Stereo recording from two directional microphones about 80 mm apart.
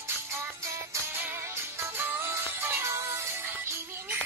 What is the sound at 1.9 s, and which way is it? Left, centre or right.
Music, right.